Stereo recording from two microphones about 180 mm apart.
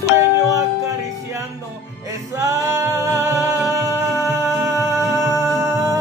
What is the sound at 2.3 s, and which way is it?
Music, 15° right (ahead or behind).